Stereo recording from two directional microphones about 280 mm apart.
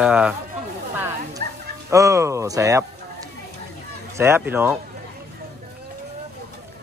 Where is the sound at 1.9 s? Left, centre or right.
Centre.